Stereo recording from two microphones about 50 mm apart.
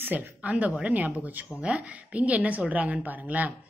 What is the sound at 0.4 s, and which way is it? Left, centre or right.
A woman's voice, right.